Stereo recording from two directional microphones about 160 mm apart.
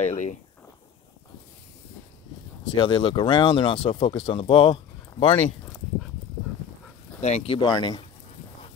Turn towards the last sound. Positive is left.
turn(degrees=25)  # may be behind; listen again after turning